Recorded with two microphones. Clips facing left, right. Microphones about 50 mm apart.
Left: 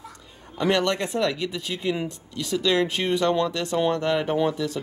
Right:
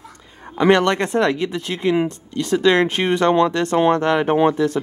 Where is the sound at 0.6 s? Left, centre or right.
Right.